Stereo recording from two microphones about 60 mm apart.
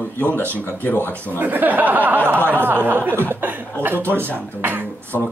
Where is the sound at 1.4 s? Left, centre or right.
Right.